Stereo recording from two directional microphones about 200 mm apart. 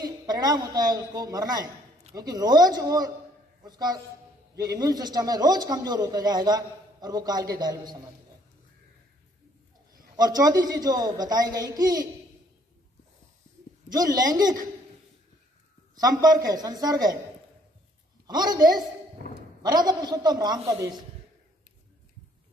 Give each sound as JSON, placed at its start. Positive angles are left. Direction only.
{"t": 0.0, "sound": "a man's voice", "side_deg": -20}
{"t": 10.1, "sound": "a man's voice", "side_deg": -20}
{"t": 13.9, "sound": "a man's voice", "side_deg": -20}
{"t": 15.9, "sound": "a man's voice", "side_deg": -20}
{"t": 18.2, "sound": "a man's voice", "side_deg": -20}